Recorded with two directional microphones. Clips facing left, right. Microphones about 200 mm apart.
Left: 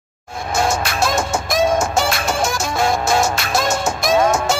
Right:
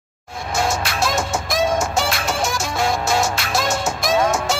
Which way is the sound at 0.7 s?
50° left (ahead or behind).